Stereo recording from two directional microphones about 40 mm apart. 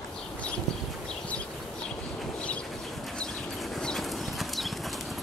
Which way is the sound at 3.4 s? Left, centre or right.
Centre.